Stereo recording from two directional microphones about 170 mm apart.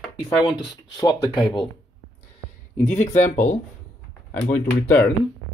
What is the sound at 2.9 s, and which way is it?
Speech, 45° left (ahead or behind).